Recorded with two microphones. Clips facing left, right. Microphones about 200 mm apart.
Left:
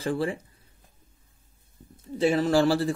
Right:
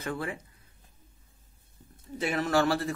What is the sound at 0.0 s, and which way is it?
Speech, 30° left (ahead or behind).